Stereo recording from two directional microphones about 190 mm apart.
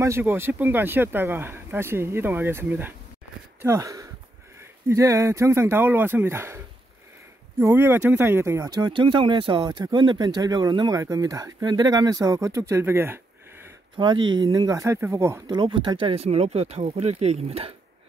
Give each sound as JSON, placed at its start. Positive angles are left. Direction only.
{"t": 0.0, "sound": "speech", "side_deg": -10}
{"t": 7.6, "sound": "speech", "side_deg": -10}
{"t": 13.9, "sound": "speech", "side_deg": -25}